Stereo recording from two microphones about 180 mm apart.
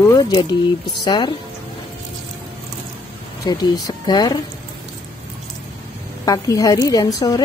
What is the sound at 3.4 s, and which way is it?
A woman's voice, 25° left (ahead or behind).